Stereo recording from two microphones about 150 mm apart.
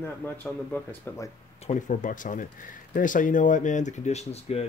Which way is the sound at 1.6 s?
50° left (ahead or behind).